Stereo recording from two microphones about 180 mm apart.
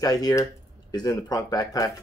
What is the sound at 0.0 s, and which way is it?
Speech, 20° left (ahead or behind).